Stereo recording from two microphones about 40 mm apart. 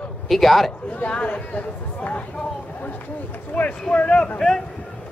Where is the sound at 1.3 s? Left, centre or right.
Left.